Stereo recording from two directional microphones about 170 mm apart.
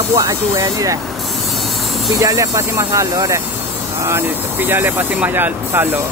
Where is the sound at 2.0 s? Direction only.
20° right (ahead or behind).